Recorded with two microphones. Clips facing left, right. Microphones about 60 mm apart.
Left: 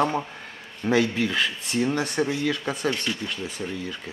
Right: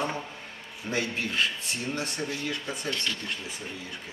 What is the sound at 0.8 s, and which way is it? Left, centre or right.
Speech, left.